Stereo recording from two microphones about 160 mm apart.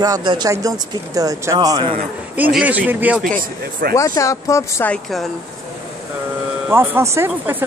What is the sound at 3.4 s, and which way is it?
Speech, 60° right (ahead or behind).